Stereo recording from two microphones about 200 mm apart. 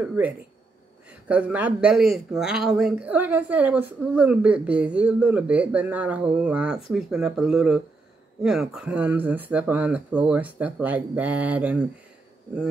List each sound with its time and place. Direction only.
0.0 s a woman's voice: 10° right (ahead or behind)